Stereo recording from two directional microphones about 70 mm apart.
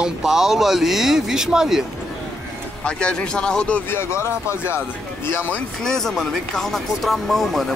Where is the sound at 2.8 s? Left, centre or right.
Centre.